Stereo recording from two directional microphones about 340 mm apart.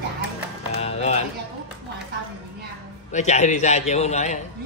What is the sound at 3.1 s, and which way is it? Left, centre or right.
Speech, centre.